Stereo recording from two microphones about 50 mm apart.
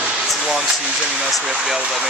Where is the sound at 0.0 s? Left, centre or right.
Centre.